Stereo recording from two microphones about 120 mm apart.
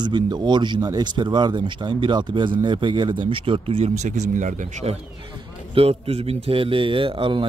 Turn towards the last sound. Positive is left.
turn(degrees=-45)  # may be behind; listen again after turning